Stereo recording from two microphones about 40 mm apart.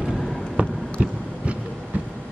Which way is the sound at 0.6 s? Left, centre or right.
Right.